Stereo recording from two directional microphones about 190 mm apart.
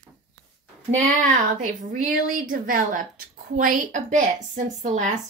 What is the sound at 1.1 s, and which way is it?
A woman's voice, 45° right (ahead or behind).